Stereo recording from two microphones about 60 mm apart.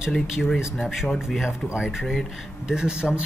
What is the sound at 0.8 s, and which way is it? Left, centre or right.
Speech, centre.